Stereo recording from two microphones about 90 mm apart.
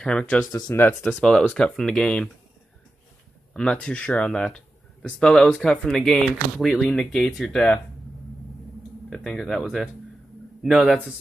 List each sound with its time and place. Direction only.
0.0 s speech: 10° left (ahead or behind)
0.5 s speech: 40° left (ahead or behind)
0.7 s speech: 25° left (ahead or behind)
1.2 s speech: 10° left (ahead or behind)
3.5 s speech: 10° left (ahead or behind)
9.1 s speech: 5° left (ahead or behind)